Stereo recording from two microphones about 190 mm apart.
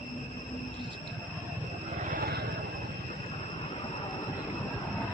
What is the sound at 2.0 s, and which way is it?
Vehicle, 50° right (ahead or behind).